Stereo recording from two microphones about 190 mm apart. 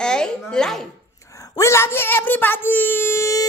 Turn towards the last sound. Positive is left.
turn(degrees=15)  # may be behind; listen again after turning